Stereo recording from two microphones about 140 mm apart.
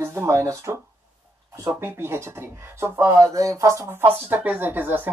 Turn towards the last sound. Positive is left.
turn(degrees=-15)  # may be behind; listen again after turning